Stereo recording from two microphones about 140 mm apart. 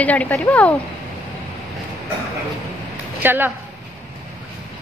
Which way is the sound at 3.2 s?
15° right (ahead or behind).